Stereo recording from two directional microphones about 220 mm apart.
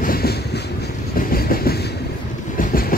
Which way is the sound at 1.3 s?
45° left (ahead or behind).